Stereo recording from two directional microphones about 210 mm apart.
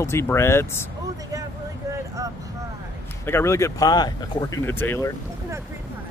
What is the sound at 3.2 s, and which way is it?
Speech, 10° left (ahead or behind).